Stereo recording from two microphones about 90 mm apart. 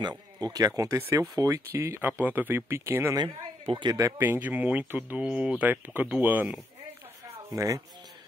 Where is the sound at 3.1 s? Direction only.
65° right (ahead or behind).